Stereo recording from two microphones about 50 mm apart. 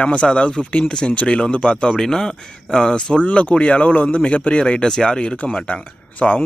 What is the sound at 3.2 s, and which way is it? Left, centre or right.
Speech, left.